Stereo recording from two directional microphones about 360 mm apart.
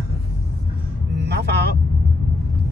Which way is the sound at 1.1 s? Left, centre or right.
Right.